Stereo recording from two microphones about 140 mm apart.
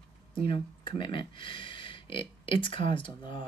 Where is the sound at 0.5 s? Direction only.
35° left (ahead or behind).